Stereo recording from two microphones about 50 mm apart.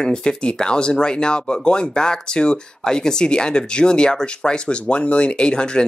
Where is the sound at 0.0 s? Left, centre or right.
Centre.